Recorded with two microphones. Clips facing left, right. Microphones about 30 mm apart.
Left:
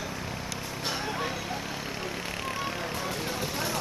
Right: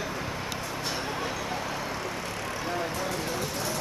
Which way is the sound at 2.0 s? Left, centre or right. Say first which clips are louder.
Even; centre.